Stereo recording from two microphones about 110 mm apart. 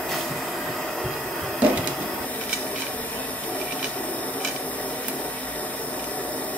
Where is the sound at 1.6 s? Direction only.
15° right (ahead or behind).